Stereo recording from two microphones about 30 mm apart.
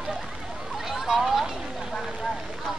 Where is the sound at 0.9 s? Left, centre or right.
Centre.